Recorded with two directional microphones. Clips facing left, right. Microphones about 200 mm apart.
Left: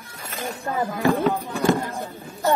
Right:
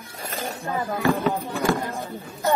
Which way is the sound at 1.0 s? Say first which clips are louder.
Left 2 dB; 15° left (ahead or behind).